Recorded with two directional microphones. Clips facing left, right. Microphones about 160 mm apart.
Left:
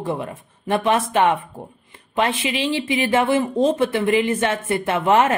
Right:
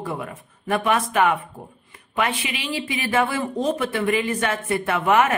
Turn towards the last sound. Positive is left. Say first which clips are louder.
# left 2 dB
turn(degrees=25)  # may be behind; listen again after turning